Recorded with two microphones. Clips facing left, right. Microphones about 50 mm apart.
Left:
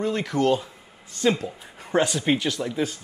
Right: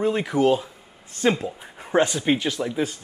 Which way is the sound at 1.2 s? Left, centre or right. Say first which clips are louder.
Right 1 dB; right.